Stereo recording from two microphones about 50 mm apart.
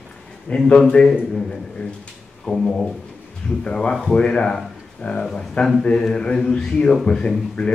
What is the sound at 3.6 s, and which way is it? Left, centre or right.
A man's voice, centre.